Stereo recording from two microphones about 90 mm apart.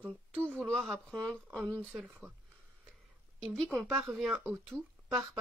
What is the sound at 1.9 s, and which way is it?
Speech, 10° right (ahead or behind).